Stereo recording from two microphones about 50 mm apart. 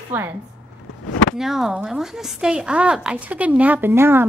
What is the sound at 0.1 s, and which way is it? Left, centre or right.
Speech, right.